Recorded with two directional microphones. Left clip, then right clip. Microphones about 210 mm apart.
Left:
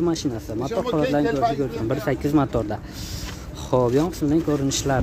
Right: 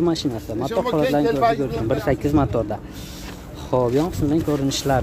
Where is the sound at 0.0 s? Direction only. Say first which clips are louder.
Right 2 dB; 10° right (ahead or behind).